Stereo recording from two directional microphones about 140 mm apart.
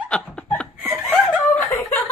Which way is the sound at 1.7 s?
20° left (ahead or behind).